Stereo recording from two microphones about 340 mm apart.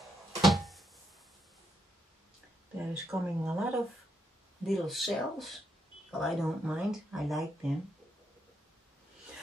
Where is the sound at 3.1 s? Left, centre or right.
Centre.